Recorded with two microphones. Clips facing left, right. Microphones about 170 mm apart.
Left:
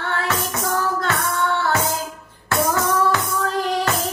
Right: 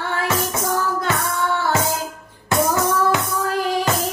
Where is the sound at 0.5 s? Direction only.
15° right (ahead or behind).